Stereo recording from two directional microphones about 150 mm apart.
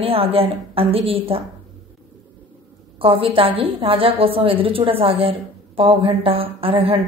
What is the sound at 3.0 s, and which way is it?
A woman's voice, 35° right (ahead or behind).